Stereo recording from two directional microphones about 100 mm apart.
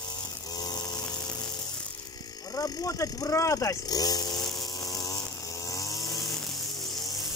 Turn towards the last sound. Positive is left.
turn(degrees=0)  # may be behind; listen again after turning